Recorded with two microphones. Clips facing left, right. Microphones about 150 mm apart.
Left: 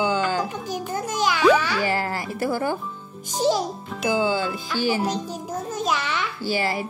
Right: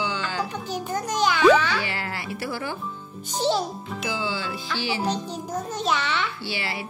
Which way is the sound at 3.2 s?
10° left (ahead or behind).